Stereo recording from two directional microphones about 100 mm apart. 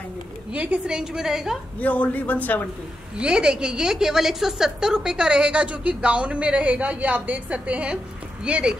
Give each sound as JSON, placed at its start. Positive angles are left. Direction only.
{"t": 0.5, "sound": "a woman's voice", "side_deg": -15}
{"t": 1.8, "sound": "a man's voice", "side_deg": 15}
{"t": 3.2, "sound": "a woman's voice", "side_deg": -10}